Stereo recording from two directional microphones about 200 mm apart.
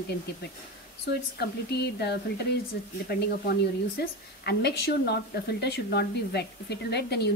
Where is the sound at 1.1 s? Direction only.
55° left (ahead or behind).